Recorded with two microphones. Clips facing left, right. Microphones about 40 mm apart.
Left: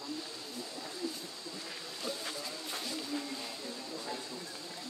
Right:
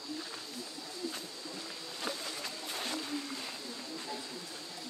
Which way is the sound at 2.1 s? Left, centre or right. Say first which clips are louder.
Even; right.